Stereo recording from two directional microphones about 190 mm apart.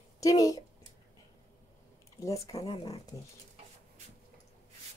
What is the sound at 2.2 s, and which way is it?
Speech, 15° left (ahead or behind).